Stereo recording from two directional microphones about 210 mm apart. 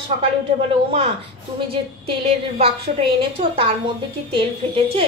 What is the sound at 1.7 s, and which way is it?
A woman's voice, 25° right (ahead or behind).